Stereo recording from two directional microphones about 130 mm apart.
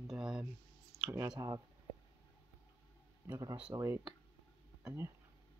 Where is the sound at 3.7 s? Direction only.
20° right (ahead or behind).